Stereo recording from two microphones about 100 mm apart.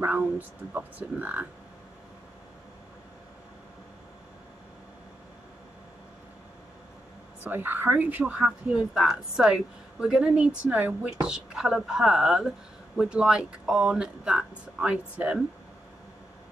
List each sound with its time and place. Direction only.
0.0 s speech: 15° right (ahead or behind)
7.4 s speech: 20° right (ahead or behind)